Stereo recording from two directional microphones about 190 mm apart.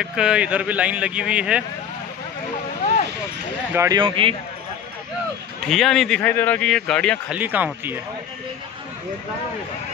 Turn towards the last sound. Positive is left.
turn(degrees=-10)  # may be behind; listen again after turning